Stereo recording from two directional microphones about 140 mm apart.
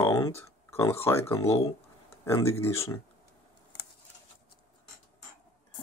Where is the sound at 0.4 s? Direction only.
20° left (ahead or behind).